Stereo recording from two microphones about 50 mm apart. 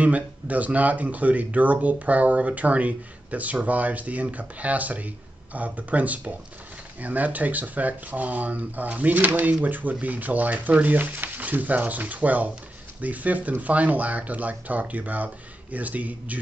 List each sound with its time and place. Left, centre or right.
0.0 s speech: right